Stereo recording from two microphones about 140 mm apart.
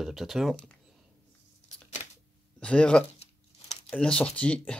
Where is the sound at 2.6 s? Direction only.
10° left (ahead or behind).